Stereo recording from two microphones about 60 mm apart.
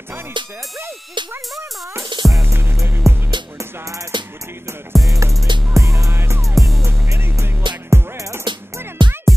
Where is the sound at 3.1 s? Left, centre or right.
Right.